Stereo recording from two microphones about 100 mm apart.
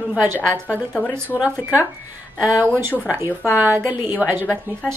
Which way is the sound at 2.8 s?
25° right (ahead or behind).